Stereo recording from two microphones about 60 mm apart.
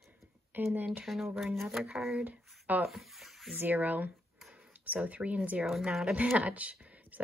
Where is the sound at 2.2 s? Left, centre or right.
Right.